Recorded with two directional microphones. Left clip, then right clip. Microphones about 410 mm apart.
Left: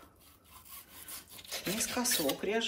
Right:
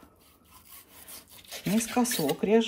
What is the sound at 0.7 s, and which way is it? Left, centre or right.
Rub, centre.